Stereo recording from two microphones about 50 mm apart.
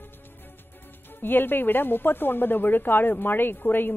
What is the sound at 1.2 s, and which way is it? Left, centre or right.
A man's voice, left.